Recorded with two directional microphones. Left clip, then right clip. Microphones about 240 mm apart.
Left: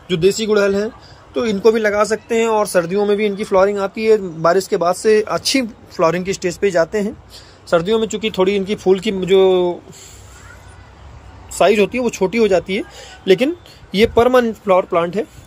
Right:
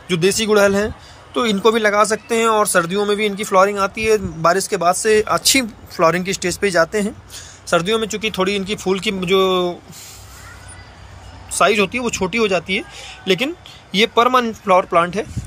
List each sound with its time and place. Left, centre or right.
0.1 s a man's voice: centre
11.5 s a man's voice: centre